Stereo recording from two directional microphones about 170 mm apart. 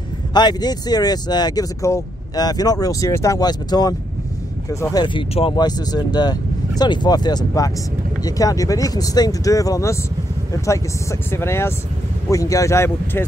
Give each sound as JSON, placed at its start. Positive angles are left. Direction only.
{"t": 0.3, "sound": "speech", "side_deg": 25}